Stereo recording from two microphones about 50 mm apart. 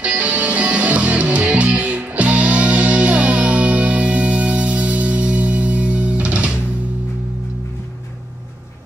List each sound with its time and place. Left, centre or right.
0.0 s music: right